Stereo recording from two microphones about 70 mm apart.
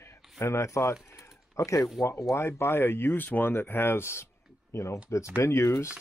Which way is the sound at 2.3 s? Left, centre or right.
Left.